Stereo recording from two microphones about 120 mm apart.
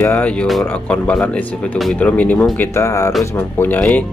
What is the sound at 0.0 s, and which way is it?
Speech, 15° left (ahead or behind).